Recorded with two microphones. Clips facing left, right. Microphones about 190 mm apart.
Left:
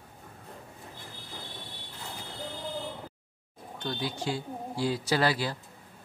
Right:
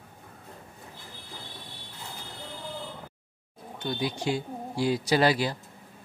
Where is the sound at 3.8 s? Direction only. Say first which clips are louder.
Right 3 dB; 15° right (ahead or behind).